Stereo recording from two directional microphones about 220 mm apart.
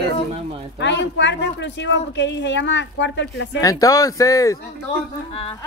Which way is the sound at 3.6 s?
15° left (ahead or behind).